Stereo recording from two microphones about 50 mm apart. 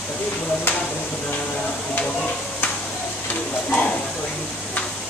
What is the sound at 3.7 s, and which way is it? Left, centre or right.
Speech, left.